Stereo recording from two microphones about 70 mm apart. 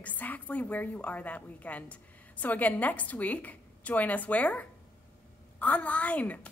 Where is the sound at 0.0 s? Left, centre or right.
Left.